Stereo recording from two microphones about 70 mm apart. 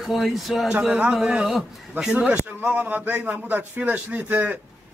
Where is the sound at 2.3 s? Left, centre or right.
Centre.